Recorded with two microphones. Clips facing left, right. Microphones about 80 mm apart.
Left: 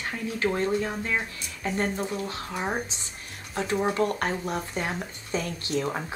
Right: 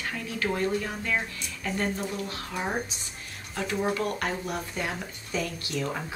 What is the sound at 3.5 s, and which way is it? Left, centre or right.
A woman's voice, left.